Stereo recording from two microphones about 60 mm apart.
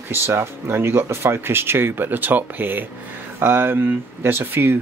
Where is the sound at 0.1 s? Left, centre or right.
Right.